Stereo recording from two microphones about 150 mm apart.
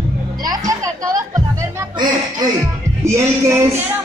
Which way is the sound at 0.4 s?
25° right (ahead or behind).